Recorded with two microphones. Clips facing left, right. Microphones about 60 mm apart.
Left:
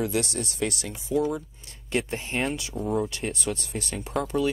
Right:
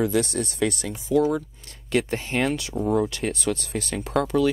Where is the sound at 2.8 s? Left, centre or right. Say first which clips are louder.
Right 4 dB; right.